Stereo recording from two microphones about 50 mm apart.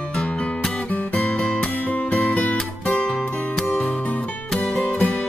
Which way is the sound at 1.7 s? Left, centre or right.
Left.